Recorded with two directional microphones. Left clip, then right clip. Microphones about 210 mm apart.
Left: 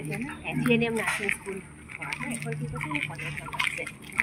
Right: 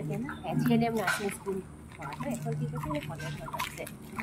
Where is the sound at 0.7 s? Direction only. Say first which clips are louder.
Left 4 dB; 20° right (ahead or behind).